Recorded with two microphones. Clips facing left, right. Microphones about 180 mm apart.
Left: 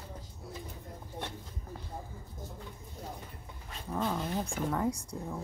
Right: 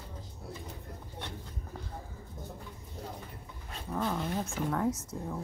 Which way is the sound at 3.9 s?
Centre (ahead or behind).